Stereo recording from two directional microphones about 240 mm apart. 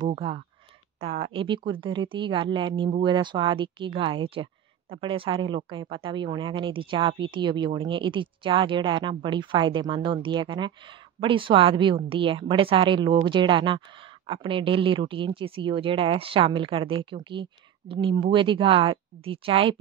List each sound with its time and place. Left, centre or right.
0.0 s speech: right